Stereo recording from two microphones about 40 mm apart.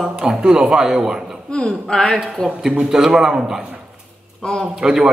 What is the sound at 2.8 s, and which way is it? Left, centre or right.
Speech, centre.